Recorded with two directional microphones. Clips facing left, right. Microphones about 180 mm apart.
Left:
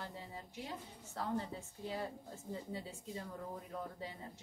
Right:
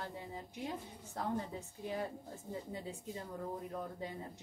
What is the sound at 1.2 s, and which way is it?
Speech, 15° right (ahead or behind).